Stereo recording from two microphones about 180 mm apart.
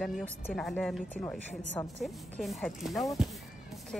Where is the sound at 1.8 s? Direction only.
15° left (ahead or behind).